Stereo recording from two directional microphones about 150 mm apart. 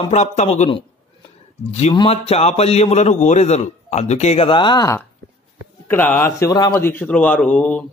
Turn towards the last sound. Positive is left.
turn(degrees=5)  # may be behind; listen again after turning